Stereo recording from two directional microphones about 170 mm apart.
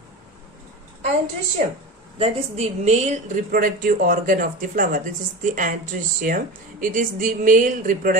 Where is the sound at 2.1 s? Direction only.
35° right (ahead or behind).